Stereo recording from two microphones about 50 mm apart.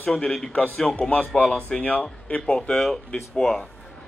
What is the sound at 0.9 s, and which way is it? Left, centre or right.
Speech, left.